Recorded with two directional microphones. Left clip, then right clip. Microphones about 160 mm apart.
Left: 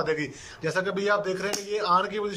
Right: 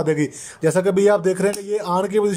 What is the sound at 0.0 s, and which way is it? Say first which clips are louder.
A man's voice: right 7 dB; 45° right (ahead or behind).